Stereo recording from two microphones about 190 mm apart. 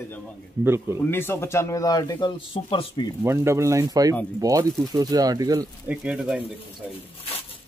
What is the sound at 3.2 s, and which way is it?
Speech, 15° right (ahead or behind).